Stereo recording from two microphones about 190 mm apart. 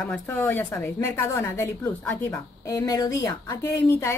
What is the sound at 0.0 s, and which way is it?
A woman's voice, 5° left (ahead or behind).